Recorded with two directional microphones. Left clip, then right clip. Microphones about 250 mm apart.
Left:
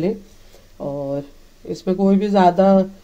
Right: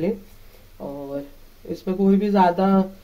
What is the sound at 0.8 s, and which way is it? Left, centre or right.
Speech, left.